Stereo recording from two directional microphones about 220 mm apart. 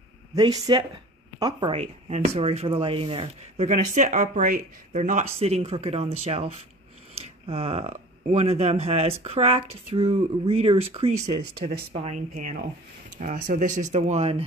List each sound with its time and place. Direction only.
0.4 s speech: 20° right (ahead or behind)